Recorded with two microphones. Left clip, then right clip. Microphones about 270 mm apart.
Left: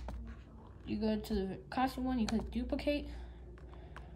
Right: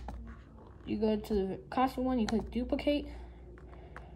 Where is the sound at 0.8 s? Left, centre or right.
Centre.